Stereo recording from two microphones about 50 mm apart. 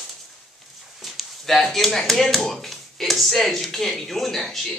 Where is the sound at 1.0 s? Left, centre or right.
Centre.